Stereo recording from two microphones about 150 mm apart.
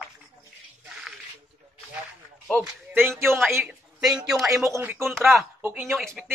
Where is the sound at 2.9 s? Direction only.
15° right (ahead or behind).